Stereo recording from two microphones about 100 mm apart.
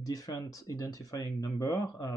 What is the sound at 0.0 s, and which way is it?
Speech, 40° left (ahead or behind).